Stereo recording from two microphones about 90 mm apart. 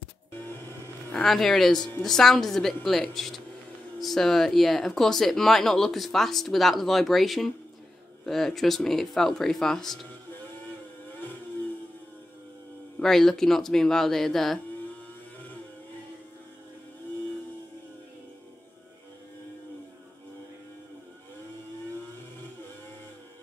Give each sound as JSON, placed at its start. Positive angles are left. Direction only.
{"t": 0.3, "sound": "music", "side_deg": 25}
{"t": 1.1, "sound": "speech", "side_deg": 0}
{"t": 13.0, "sound": "speech", "side_deg": 5}